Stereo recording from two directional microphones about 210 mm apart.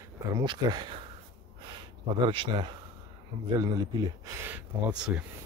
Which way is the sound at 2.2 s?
25° right (ahead or behind).